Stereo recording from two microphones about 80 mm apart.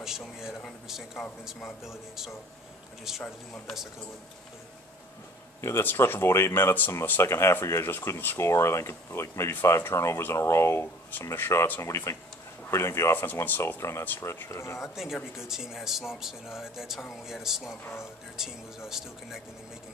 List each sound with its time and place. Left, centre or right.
0.0 s speech: centre
5.6 s speech: left
14.8 s speech: centre